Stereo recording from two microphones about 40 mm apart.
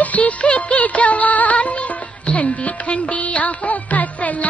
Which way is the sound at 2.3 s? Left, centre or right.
Left.